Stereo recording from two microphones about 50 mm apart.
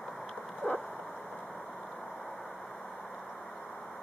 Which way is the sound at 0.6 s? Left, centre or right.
Centre.